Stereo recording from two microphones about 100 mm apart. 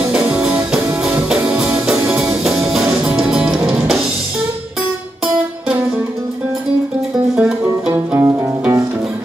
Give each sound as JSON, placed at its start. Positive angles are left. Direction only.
{"t": 0.1, "sound": "music", "side_deg": -10}
{"t": 7.3, "sound": "music", "side_deg": -10}